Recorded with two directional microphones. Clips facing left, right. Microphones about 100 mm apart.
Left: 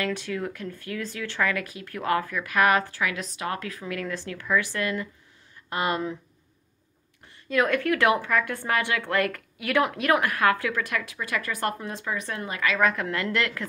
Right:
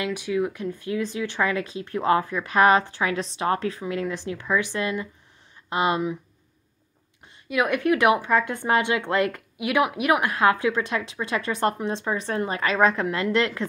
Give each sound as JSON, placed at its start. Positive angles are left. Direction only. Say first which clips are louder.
{"t": 0.0, "sound": "a woman's voice", "louder": "right 4 dB", "side_deg": -15}
{"t": 7.4, "sound": "a woman's voice", "louder": "right 1 dB", "side_deg": -15}